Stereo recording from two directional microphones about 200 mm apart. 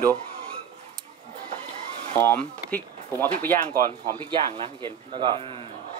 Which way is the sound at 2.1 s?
15° left (ahead or behind).